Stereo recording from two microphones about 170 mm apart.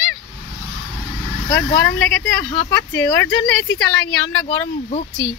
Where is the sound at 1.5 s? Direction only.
20° left (ahead or behind).